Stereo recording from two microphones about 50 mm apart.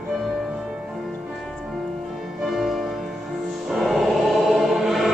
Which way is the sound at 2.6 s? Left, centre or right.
Centre.